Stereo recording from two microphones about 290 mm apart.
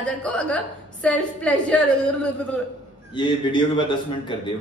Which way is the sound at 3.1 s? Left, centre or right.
Centre.